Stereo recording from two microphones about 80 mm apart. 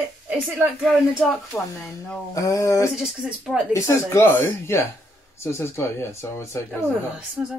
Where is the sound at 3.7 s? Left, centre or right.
Left.